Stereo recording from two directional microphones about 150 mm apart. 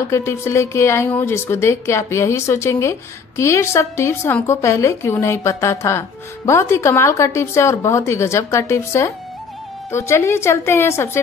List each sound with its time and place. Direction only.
0.1 s a woman's voice: 20° left (ahead or behind)